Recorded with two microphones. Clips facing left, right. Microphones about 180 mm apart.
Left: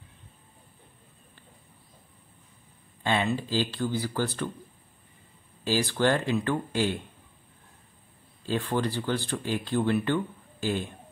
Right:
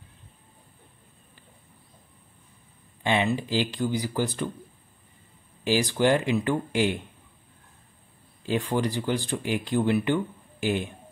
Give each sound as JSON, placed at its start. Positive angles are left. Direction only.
{"t": 3.0, "sound": "speech", "side_deg": -15}
{"t": 5.6, "sound": "speech", "side_deg": -15}
{"t": 8.5, "sound": "speech", "side_deg": -15}